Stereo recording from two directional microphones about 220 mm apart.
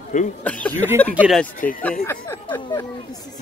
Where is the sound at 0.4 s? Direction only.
5° left (ahead or behind).